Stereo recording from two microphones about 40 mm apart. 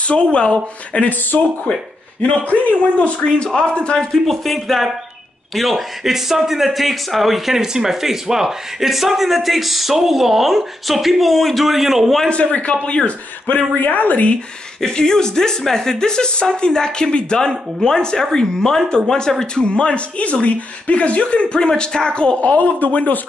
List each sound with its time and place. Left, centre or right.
0.0 s speech: left
0.9 s a man's voice: left
3.4 s speech: centre
4.1 s speech: centre
12.3 s a man's voice: left
13.8 s a man's voice: left
14.8 s speech: centre
22.4 s a man's voice: left